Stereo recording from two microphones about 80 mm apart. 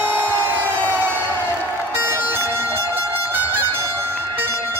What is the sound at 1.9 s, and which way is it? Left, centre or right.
Music, right.